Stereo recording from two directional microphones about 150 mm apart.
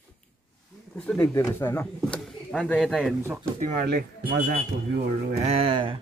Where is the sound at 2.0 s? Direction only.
5° left (ahead or behind).